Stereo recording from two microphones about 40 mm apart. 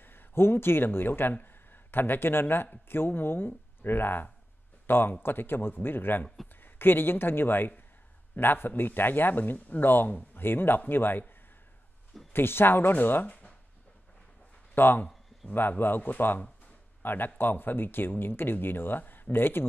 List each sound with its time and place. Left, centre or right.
0.0 s a man's voice: left
10.3 s speech: left
12.3 s speech: left
12.9 s speech: left
14.8 s speech: left